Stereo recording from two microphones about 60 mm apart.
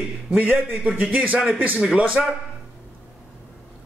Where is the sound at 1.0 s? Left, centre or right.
Right.